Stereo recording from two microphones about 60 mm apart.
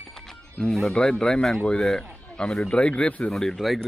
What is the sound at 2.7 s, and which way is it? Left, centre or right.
Speech, centre.